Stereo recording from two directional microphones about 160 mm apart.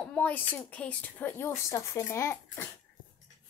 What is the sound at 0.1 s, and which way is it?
A woman's voice, 10° left (ahead or behind).